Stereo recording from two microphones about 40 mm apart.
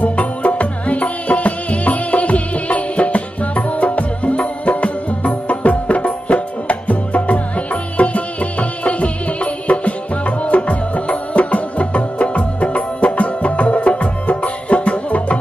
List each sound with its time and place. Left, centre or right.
0.0 s music: left